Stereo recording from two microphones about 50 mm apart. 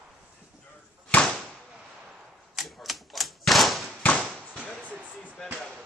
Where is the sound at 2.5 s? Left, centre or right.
Centre.